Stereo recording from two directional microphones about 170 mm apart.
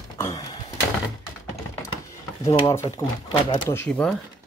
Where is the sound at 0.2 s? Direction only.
20° left (ahead or behind).